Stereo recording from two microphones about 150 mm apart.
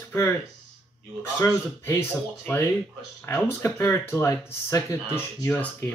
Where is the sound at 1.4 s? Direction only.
15° left (ahead or behind).